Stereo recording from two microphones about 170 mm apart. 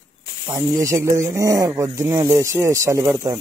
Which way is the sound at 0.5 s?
20° right (ahead or behind).